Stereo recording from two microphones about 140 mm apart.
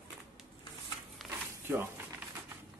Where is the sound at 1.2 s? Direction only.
Centre (ahead or behind).